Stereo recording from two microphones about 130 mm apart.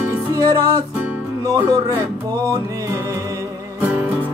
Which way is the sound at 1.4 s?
25° right (ahead or behind).